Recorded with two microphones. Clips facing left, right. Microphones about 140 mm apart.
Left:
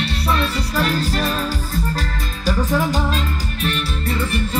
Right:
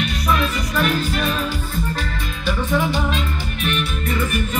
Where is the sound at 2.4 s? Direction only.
40° left (ahead or behind).